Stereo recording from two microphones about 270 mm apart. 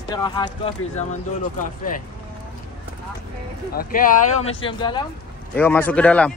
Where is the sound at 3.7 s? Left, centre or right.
Left.